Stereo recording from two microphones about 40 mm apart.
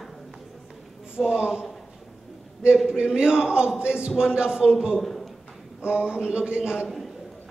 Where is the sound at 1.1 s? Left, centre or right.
Right.